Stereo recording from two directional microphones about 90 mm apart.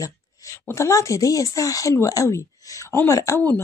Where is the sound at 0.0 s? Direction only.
40° left (ahead or behind).